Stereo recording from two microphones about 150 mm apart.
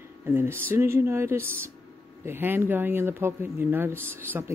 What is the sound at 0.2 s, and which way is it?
Speech, 15° right (ahead or behind).